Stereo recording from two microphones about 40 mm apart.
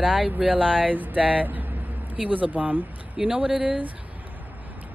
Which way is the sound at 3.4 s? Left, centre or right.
Centre.